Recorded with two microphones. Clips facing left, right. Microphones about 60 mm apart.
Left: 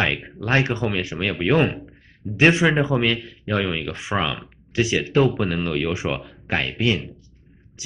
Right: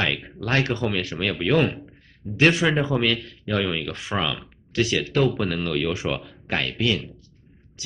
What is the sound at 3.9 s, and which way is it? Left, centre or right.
Speech, centre.